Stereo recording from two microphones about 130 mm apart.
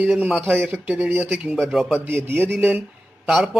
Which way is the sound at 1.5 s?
Centre (ahead or behind).